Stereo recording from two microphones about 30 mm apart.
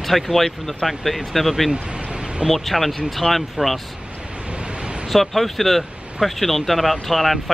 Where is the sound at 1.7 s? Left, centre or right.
Right.